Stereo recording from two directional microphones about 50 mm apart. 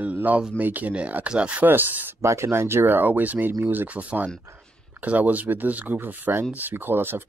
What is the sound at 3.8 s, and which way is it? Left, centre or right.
Speech, right.